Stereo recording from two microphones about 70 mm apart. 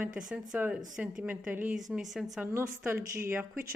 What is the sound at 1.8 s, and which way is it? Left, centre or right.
Speech, centre.